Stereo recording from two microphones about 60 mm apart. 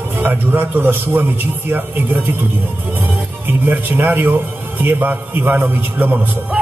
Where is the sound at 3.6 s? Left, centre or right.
Right.